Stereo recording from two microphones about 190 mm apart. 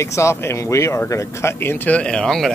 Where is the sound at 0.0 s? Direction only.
15° left (ahead or behind).